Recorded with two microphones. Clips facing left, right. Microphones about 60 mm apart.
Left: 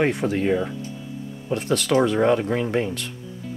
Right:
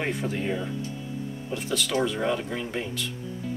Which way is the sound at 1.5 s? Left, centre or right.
Left.